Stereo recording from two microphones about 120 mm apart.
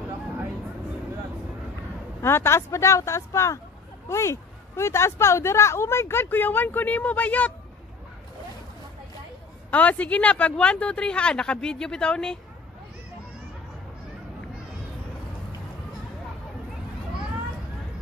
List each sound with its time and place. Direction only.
2.2 s speech: 20° left (ahead or behind)
9.7 s speech: 15° left (ahead or behind)